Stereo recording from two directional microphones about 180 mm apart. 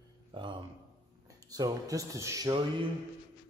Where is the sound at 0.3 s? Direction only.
25° right (ahead or behind).